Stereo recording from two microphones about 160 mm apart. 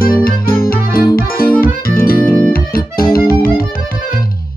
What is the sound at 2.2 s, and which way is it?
Music, 10° left (ahead or behind).